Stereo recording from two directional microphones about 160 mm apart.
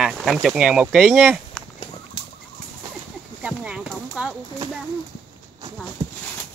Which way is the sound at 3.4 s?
5° right (ahead or behind).